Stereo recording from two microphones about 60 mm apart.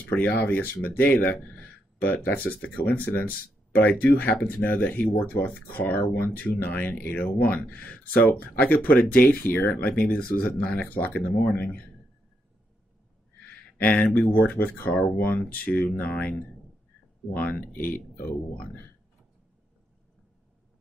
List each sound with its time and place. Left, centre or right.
0.0 s speech: left
13.4 s speech: left